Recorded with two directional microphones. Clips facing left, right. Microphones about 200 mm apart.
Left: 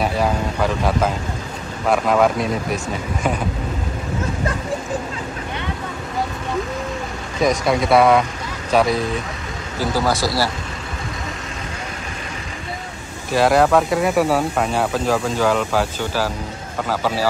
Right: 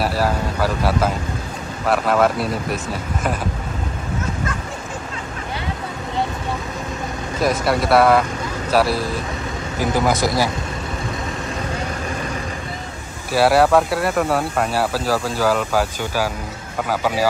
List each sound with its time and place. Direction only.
0.0 s speech: 5° right (ahead or behind)
7.4 s speech: 5° right (ahead or behind)
9.8 s speech: 20° right (ahead or behind)
13.3 s speech: 5° right (ahead or behind)